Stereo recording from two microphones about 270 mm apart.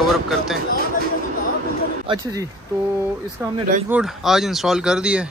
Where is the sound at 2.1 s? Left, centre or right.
Centre.